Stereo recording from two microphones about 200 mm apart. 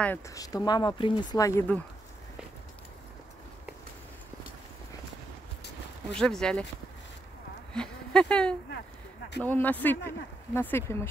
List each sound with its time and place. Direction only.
0.0 s speech: 10° left (ahead or behind)
6.1 s speech: 5° left (ahead or behind)
7.7 s speech: 5° left (ahead or behind)